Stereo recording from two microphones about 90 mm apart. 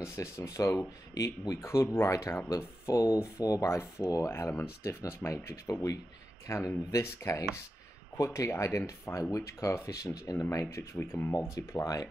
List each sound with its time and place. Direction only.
0.1 s speech: 35° left (ahead or behind)
11.5 s speech: 40° left (ahead or behind)